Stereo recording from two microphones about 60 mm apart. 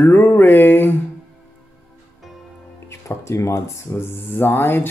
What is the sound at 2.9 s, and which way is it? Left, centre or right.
Speech, left.